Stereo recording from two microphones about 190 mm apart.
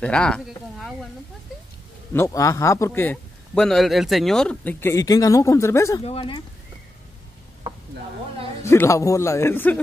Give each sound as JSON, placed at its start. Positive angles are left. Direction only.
{"t": 0.0, "sound": "speech", "side_deg": 5}
{"t": 2.1, "sound": "a man's voice", "side_deg": 15}
{"t": 6.0, "sound": "speech", "side_deg": 30}
{"t": 8.6, "sound": "a man's voice", "side_deg": 15}